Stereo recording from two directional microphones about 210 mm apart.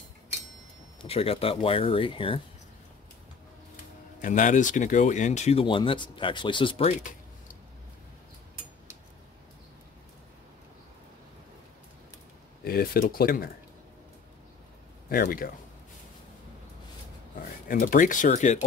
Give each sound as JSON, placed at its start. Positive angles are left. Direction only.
{"t": 1.0, "sound": "speech", "side_deg": 30}
{"t": 4.2, "sound": "speech", "side_deg": 35}
{"t": 12.6, "sound": "speech", "side_deg": 45}
{"t": 15.0, "sound": "speech", "side_deg": 45}
{"t": 17.6, "sound": "speech", "side_deg": 40}